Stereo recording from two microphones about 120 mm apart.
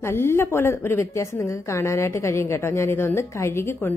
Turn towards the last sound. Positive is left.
turn(degrees=20)  # may be behind; listen again after turning